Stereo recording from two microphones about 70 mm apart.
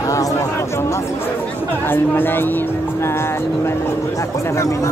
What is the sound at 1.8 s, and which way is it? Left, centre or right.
Speech, left.